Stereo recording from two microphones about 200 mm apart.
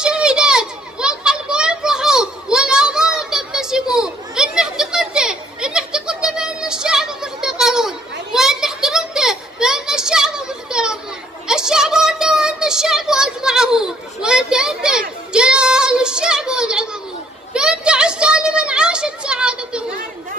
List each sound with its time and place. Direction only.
0.0 s children playing: 5° right (ahead or behind)
11.4 s child singing: 5° right (ahead or behind)
17.6 s a sound: 5° right (ahead or behind)